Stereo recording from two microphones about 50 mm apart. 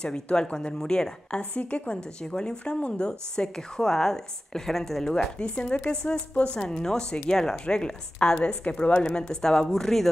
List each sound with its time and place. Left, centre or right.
0.0 s a woman's voice: left
1.4 s a woman's voice: left; by 10.0 s centre